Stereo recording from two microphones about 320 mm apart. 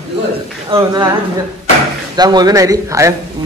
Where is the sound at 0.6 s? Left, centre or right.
Centre.